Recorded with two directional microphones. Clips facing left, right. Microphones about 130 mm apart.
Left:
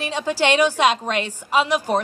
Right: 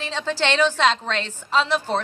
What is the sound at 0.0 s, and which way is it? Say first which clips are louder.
Speech: left 3 dB; 10° left (ahead or behind).